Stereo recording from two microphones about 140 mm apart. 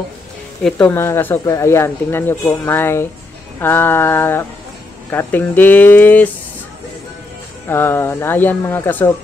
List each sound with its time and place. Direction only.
0.7 s speech: 5° left (ahead or behind)
0.9 s speech: 15° left (ahead or behind)
7.6 s speech: 15° left (ahead or behind)